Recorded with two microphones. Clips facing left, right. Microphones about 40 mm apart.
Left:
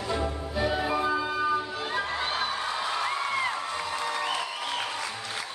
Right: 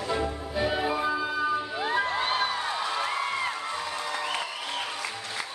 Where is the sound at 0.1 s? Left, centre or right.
Centre.